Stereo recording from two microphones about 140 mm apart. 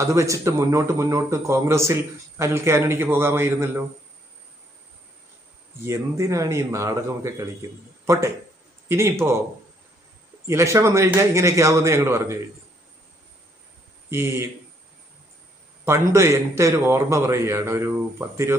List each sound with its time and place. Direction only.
0.0 s speech: 20° right (ahead or behind)
5.9 s speech: 25° right (ahead or behind)
8.8 s a man's voice: 20° right (ahead or behind)
10.4 s speech: 20° right (ahead or behind)
14.1 s speech: 20° right (ahead or behind)
15.8 s speech: 20° right (ahead or behind)